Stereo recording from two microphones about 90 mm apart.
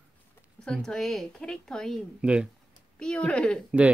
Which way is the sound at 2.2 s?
10° right (ahead or behind).